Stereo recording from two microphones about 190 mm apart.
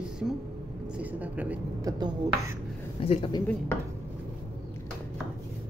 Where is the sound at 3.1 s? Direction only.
25° left (ahead or behind).